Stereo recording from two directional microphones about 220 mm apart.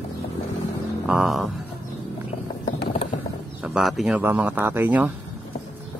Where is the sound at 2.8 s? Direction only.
25° left (ahead or behind).